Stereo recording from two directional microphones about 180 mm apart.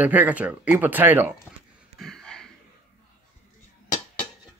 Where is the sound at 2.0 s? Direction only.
5° left (ahead or behind).